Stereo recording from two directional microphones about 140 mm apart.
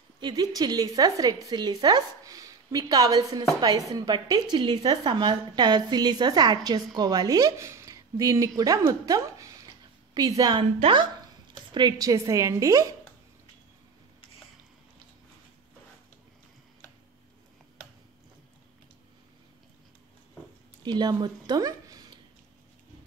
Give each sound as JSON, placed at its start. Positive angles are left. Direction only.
{"t": 0.2, "sound": "a woman's voice", "side_deg": -30}
{"t": 10.6, "sound": "a woman's voice", "side_deg": -40}
{"t": 20.8, "sound": "speech", "side_deg": -30}